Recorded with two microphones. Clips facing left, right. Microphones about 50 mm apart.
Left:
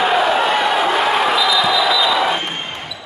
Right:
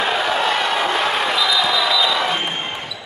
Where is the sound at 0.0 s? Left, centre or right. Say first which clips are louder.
Left 4 dB; centre.